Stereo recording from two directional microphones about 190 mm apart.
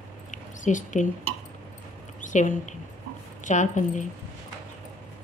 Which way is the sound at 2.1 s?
40° left (ahead or behind).